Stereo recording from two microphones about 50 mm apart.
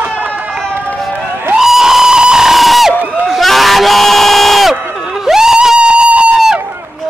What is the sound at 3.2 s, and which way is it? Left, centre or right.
Crowd, centre.